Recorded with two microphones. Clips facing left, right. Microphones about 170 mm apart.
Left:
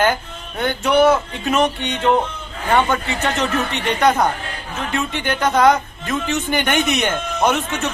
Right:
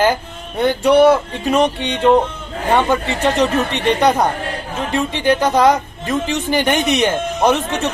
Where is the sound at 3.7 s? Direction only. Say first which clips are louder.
Right 1 dB; 30° right (ahead or behind).